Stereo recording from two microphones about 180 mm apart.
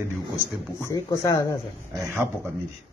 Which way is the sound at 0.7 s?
15° left (ahead or behind).